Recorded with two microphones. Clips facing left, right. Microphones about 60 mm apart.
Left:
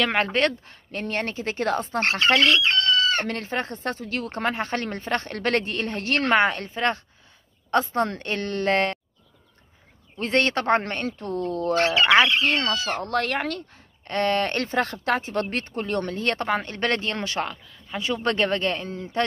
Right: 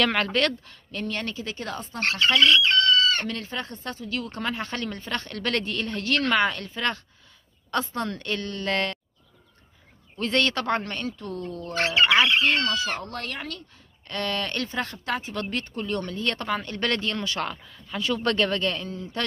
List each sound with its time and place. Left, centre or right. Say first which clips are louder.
0.1 s speech: left 2 dB; left
2.6 s chicken: right 1 dB; left
3.3 s speech: left 4 dB; left
8.4 s speech: left 5 dB; left
8.6 s speech: left 5 dB; left
10.1 s speech: left 2 dB; left
11.4 s speech: left 8 dB; left
11.7 s speech: left 1 dB; centre
13.0 s speech: left 9 dB; left
14.0 s speech: left 6 dB; left
17.8 s speech: even; centre; by 19.2 s left